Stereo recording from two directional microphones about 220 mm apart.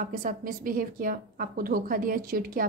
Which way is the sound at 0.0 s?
40° right (ahead or behind).